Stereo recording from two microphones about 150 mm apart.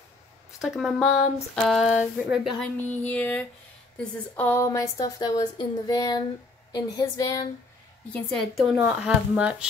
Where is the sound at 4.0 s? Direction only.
10° left (ahead or behind).